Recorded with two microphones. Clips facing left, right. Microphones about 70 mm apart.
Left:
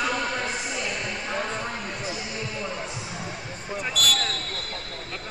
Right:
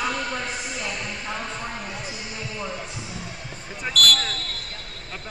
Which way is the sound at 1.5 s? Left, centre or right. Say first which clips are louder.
Left 1 dB; centre.